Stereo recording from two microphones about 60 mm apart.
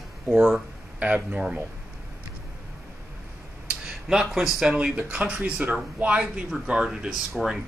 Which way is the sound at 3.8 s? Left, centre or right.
Centre.